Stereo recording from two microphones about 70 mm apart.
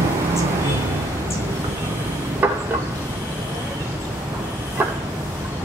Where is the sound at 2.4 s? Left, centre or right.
Right.